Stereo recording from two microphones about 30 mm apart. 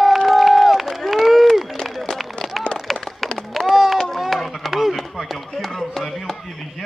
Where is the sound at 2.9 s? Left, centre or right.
Centre.